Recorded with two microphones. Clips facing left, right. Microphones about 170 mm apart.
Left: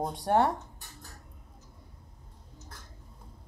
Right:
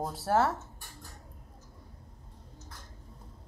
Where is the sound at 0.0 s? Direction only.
5° right (ahead or behind).